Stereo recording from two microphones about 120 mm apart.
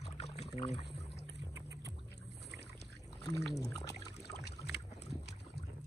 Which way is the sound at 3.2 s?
30° left (ahead or behind).